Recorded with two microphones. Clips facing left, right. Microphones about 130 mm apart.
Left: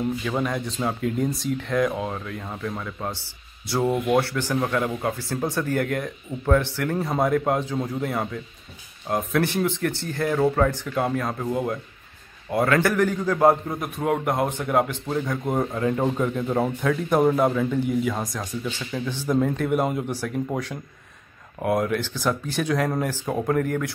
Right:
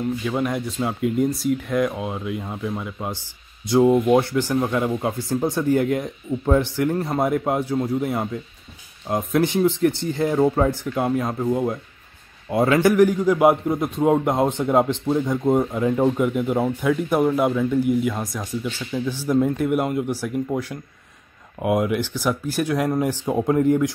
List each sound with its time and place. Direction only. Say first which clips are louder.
0.2 s speech: right 2 dB; 5° right (ahead or behind)
12.5 s a man's voice: right 4 dB; 15° right (ahead or behind)